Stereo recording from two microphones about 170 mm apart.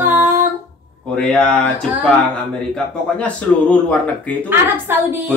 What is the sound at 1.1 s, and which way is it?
A man's voice, 5° left (ahead or behind).